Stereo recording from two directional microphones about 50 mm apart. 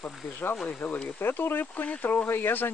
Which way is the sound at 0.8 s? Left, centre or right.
Left.